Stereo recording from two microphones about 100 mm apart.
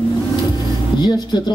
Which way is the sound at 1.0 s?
50° left (ahead or behind).